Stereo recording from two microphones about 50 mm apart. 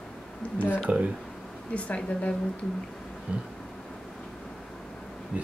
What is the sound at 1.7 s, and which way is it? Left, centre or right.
Speech, left.